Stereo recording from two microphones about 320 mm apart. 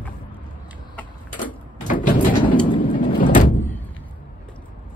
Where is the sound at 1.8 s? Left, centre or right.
Left.